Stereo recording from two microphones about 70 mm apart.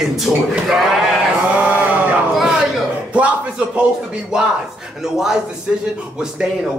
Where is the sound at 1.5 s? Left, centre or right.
Centre.